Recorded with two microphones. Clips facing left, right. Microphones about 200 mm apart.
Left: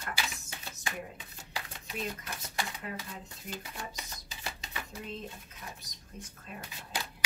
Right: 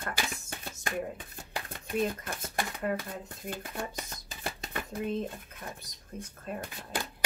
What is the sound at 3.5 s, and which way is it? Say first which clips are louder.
Shuffling cards: right 5 dB; 55° right (ahead or behind).